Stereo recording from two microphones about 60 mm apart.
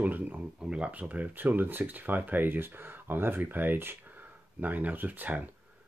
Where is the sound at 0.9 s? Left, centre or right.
Right.